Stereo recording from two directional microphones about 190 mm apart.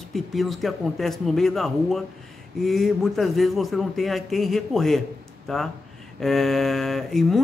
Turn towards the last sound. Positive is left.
turn(degrees=0)  # may be behind; listen again after turning